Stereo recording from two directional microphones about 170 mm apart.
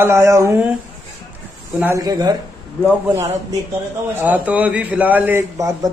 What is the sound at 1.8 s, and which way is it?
Speech, 15° right (ahead or behind).